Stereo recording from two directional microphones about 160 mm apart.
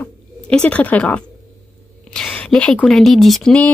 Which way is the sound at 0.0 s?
5° left (ahead or behind).